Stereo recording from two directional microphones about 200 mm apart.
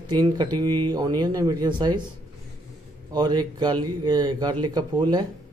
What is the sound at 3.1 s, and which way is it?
Speech, 20° right (ahead or behind).